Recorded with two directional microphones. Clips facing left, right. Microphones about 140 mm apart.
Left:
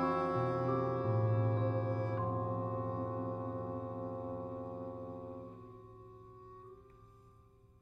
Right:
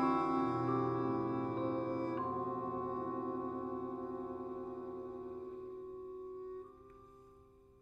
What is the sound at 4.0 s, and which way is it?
Gong, 30° left (ahead or behind).